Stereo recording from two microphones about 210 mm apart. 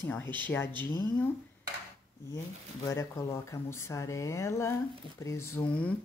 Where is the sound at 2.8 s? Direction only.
15° left (ahead or behind).